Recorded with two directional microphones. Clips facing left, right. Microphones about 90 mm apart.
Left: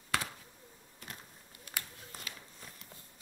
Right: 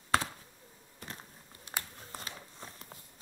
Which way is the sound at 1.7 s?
30° right (ahead or behind).